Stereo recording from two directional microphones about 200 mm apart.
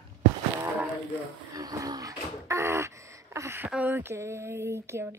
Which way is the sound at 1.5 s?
20° right (ahead or behind).